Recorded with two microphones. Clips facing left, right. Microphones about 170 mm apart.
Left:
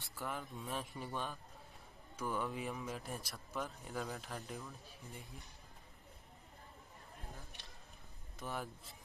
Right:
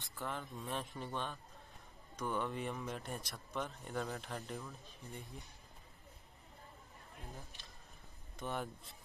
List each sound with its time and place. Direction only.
0.1 s speech: centre (ahead or behind)
8.4 s speech: centre (ahead or behind)